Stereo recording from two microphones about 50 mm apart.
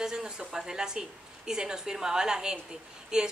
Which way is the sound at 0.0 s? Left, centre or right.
Centre.